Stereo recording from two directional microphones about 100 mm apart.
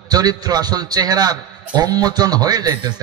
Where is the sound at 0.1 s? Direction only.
40° right (ahead or behind).